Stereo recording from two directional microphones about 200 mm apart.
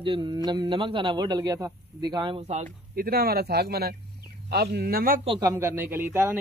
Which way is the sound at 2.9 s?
50° right (ahead or behind).